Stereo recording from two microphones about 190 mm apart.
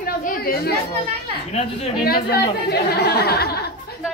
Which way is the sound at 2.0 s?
55° left (ahead or behind).